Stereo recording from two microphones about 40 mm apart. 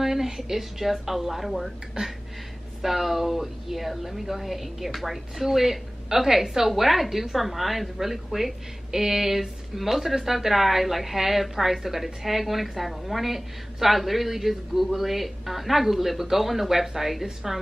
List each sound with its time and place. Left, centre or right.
0.0 s a woman's voice: centre
2.0 s a sound: centre
2.8 s a woman's voice: centre